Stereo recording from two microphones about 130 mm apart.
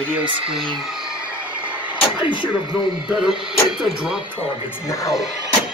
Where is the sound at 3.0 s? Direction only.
5° right (ahead or behind).